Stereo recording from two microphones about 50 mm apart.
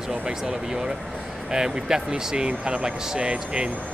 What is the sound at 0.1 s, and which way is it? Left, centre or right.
Speech, centre.